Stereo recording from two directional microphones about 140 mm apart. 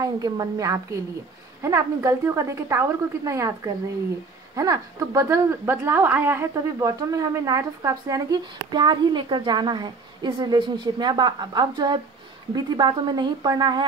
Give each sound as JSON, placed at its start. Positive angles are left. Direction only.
{"t": 0.0, "sound": "a woman's voice", "side_deg": -25}